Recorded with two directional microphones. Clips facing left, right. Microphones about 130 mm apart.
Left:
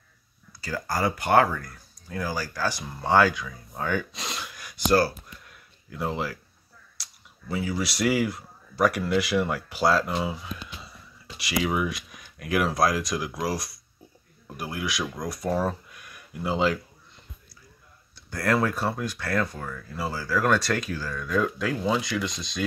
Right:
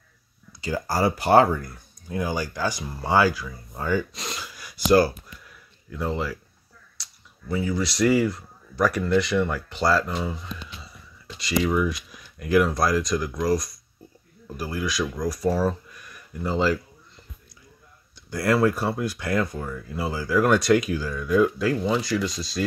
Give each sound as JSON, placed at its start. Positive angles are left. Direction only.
{"t": 0.5, "sound": "speech", "side_deg": -20}
{"t": 5.9, "sound": "speech", "side_deg": 0}
{"t": 18.3, "sound": "speech", "side_deg": -10}